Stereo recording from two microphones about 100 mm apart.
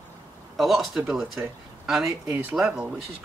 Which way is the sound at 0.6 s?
Centre (ahead or behind).